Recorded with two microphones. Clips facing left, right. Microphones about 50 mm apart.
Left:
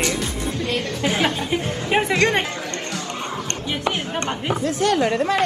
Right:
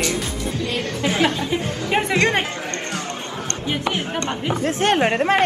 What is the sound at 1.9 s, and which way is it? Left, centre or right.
Speech, centre.